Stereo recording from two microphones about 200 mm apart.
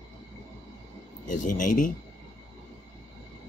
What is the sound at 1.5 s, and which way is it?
Speech, 40° left (ahead or behind).